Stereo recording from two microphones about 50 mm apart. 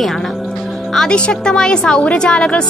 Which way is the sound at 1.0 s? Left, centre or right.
Centre.